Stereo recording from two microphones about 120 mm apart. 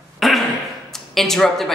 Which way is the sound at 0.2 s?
Centre (ahead or behind).